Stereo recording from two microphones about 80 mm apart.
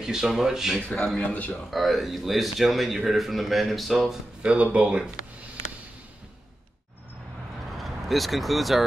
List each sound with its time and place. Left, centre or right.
0.0 s speech: centre
0.7 s speech: left
1.0 s speech: centre
1.7 s speech: centre
4.4 s speech: centre
7.7 s speech: centre